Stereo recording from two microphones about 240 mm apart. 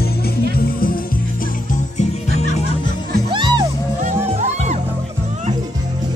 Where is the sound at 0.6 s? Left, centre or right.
Left.